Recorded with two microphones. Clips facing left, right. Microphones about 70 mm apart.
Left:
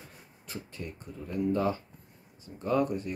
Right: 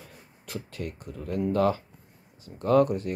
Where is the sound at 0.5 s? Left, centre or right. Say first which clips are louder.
Right 5 dB; right.